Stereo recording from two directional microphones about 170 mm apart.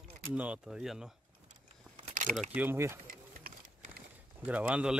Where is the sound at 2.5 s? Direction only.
10° right (ahead or behind).